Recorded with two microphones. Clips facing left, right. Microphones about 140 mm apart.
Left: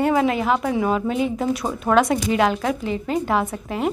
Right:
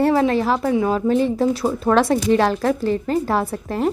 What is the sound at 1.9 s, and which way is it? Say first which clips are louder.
Speech: right 1 dB; 35° right (ahead or behind).